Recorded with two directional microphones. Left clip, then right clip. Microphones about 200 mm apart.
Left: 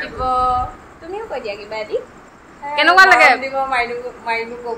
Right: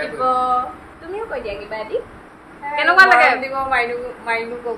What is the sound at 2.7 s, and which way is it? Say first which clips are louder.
Speech: left 2 dB; 45° left (ahead or behind).